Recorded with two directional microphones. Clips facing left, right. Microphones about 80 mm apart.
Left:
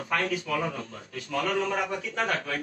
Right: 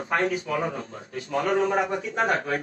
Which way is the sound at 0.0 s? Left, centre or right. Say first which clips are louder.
Right 3 dB; right.